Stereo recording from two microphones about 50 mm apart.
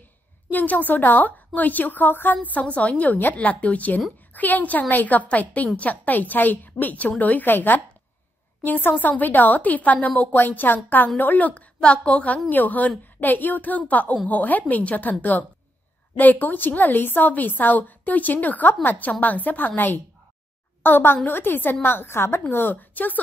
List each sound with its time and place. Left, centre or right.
0.5 s a woman's voice: left
2.3 s a woman's voice: left
22.5 s a woman's voice: left